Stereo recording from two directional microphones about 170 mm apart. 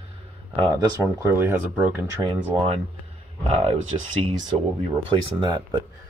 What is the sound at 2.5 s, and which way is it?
Speech, 35° right (ahead or behind).